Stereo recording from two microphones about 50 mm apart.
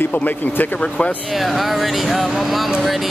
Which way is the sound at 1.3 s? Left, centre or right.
Centre.